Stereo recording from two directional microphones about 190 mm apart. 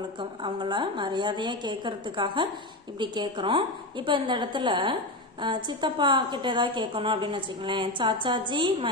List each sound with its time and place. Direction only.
0.2 s a woman's voice: 25° right (ahead or behind)